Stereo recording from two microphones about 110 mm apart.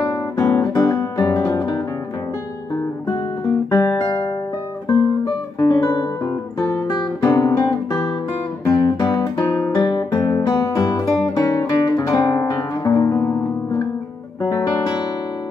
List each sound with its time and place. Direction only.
0.0 s guitar: 30° left (ahead or behind)
3.7 s guitar: 20° left (ahead or behind)
4.0 s music: 40° left (ahead or behind)
6.9 s guitar: 40° left (ahead or behind)
8.6 s music: 35° left (ahead or behind)
9.8 s guitar: 35° left (ahead or behind)
14.4 s guitar: 40° left (ahead or behind)